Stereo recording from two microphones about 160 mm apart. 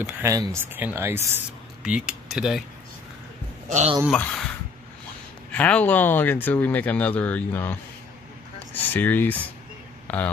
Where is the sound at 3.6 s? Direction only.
45° right (ahead or behind).